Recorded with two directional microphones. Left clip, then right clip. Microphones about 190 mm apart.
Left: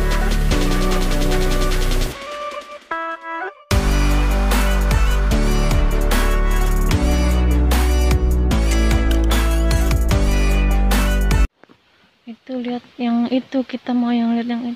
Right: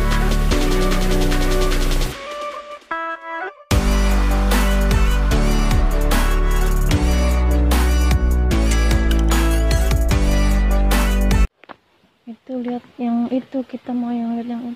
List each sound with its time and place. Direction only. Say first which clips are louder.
0.1 s music: right 1 dB; centre (ahead or behind)
2.9 s music: even; 40° right (ahead or behind)
3.6 s music: even; centre (ahead or behind)
12.6 s a sound: left 2 dB; centre (ahead or behind)